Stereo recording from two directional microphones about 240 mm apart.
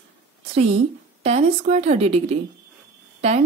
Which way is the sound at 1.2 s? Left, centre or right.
Right.